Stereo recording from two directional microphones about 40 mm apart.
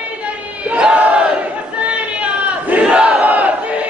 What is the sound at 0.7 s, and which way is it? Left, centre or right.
Crowd, right.